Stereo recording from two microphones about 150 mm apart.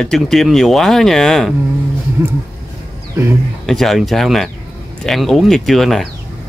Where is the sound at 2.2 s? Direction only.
15° right (ahead or behind).